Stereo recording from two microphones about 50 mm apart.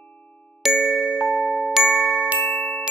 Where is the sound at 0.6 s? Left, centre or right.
Centre.